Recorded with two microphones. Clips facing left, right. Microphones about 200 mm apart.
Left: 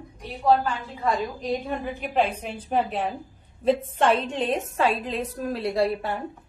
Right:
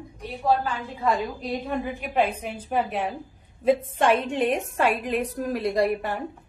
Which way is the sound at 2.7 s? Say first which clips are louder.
Left 1 dB; 10° right (ahead or behind).